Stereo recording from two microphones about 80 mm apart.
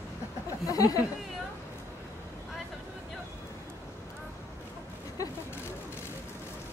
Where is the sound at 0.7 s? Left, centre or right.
Left.